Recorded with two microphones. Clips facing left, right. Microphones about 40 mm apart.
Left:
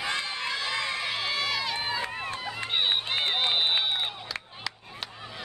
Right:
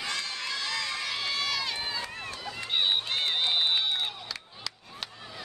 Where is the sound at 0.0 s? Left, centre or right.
Left.